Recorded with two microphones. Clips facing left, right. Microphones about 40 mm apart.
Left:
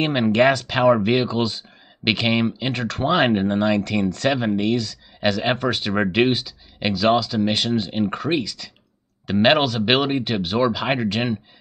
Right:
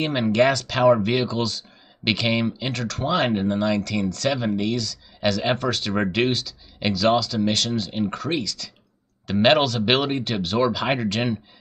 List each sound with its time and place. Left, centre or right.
0.0 s speech: left